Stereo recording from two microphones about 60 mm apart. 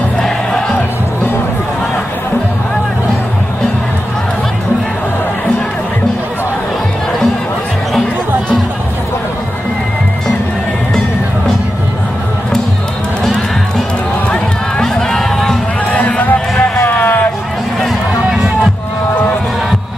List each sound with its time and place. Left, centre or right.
0.2 s music: centre
13.2 s music: centre
15.9 s run: left
16.8 s music: left